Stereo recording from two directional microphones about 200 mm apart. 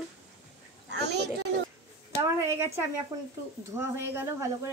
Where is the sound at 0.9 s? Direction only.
55° right (ahead or behind).